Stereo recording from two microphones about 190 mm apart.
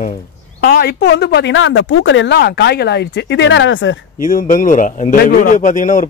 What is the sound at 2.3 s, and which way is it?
Speech, 60° left (ahead or behind).